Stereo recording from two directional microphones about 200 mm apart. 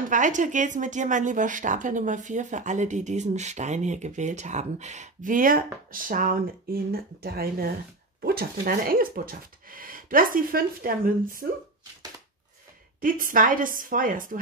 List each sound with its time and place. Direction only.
0.1 s speech: 40° right (ahead or behind)
13.0 s speech: 45° right (ahead or behind)